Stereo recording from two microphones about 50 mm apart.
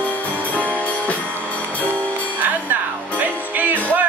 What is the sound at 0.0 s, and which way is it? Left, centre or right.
Music, left.